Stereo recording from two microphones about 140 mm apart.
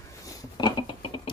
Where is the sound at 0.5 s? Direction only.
35° left (ahead or behind).